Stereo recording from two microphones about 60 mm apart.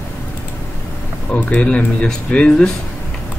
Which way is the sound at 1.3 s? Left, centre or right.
Left.